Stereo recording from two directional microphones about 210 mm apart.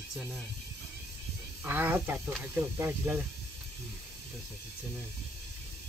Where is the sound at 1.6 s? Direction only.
10° right (ahead or behind).